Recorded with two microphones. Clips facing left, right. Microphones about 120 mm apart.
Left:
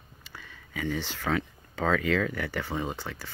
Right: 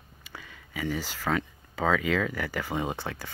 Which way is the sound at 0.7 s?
5° right (ahead or behind).